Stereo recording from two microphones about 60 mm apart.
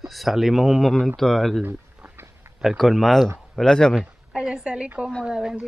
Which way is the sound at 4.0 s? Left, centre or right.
Centre.